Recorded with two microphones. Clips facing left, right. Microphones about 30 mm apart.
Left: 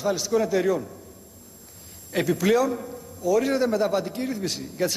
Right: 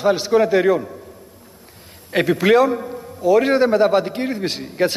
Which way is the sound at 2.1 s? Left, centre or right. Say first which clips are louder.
Right 7 dB; right.